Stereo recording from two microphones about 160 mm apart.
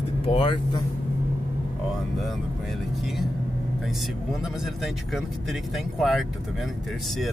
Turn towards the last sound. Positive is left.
turn(degrees=0)  # may be behind; listen again after turning